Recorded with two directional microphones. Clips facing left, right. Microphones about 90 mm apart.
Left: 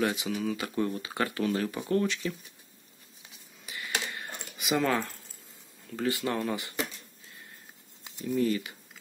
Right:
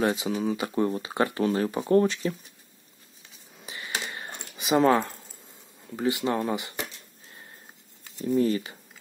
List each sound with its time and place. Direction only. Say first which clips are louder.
0.0 s speech: right 4 dB; 30° right (ahead or behind)
3.6 s typing: right 1 dB; 25° right (ahead or behind)
5.9 s speech: right 4 dB; 20° right (ahead or behind)
8.2 s speech: right 4 dB; 35° right (ahead or behind)